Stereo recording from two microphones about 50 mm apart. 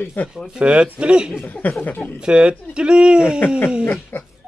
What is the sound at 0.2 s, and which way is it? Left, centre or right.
Speech, left.